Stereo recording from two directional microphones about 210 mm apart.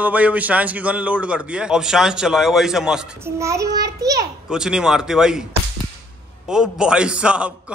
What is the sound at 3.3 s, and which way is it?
Speech, 15° right (ahead or behind).